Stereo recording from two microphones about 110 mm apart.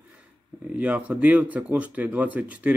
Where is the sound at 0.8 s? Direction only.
10° right (ahead or behind).